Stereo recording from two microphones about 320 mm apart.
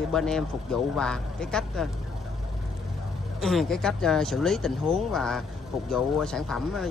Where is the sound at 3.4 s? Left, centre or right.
Centre.